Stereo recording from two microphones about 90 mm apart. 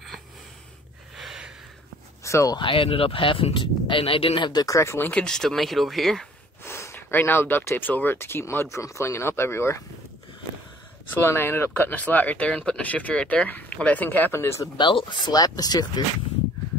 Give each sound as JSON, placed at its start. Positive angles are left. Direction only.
{"t": 1.1, "sound": "a sound", "side_deg": -5}
{"t": 2.2, "sound": "a sound", "side_deg": 35}
{"t": 2.6, "sound": "speech", "side_deg": 85}
{"t": 4.5, "sound": "speech", "side_deg": 45}
{"t": 5.1, "sound": "speech", "side_deg": 10}
{"t": 6.6, "sound": "speech", "side_deg": 30}
{"t": 11.2, "sound": "speech", "side_deg": 25}
{"t": 14.8, "sound": "speech", "side_deg": 65}